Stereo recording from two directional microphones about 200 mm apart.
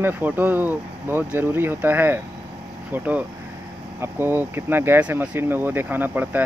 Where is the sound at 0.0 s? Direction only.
10° right (ahead or behind).